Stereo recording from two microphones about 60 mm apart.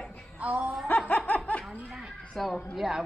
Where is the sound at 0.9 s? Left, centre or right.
Left.